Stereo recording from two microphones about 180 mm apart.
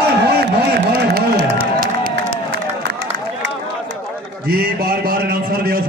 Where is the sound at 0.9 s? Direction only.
65° right (ahead or behind).